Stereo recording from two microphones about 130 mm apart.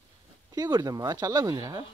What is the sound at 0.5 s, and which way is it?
Speech, 30° right (ahead or behind).